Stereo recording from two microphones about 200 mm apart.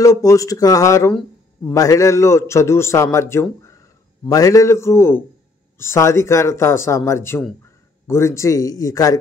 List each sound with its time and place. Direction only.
0.0 s a man's voice: 15° left (ahead or behind)